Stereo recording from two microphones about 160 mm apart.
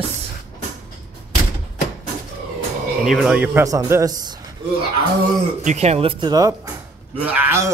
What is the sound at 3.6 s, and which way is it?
Speech, 20° right (ahead or behind).